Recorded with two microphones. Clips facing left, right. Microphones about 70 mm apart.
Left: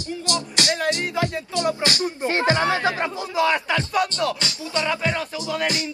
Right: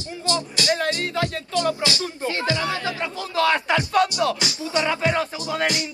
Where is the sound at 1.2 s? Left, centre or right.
Left.